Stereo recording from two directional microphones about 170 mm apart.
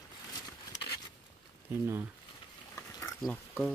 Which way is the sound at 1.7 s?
10° right (ahead or behind).